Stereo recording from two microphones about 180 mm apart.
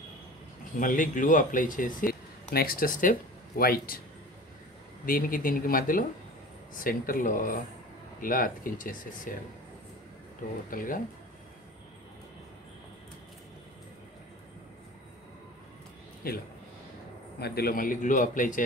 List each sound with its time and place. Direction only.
0.7 s speech: 45° left (ahead or behind)
5.0 s speech: 50° left (ahead or behind)
10.7 s speech: 50° left (ahead or behind)
16.2 s speech: 55° left (ahead or behind)